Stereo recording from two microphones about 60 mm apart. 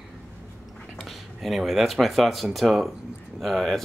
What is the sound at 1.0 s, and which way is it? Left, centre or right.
Speech, centre.